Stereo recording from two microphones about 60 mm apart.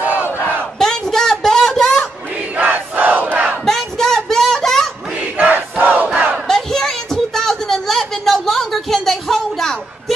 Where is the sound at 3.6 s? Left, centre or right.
Centre.